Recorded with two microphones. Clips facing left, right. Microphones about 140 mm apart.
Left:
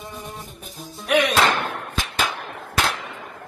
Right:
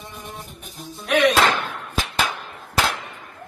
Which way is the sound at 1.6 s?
70° left (ahead or behind).